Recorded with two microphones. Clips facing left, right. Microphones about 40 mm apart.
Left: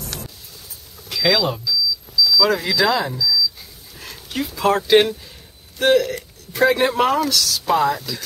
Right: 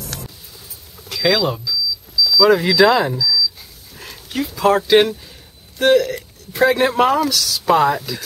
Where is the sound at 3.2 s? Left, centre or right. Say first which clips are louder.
Right 1 dB; centre.